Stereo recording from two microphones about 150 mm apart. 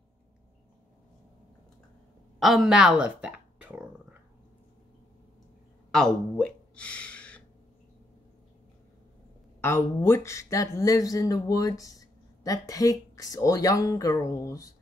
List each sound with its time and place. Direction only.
2.4 s a sound: centre (ahead or behind)
5.9 s gasp: 5° left (ahead or behind)
9.6 s speech: 15° left (ahead or behind)